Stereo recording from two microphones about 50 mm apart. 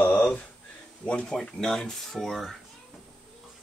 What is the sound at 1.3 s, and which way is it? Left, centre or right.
Speech, centre.